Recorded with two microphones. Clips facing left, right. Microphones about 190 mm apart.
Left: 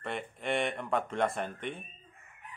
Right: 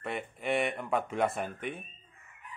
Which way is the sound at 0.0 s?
5° right (ahead or behind).